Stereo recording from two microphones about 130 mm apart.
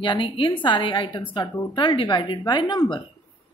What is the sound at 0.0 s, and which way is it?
A woman's voice, 40° left (ahead or behind).